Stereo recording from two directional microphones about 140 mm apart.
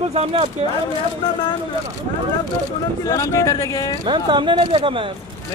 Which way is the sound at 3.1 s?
25° left (ahead or behind).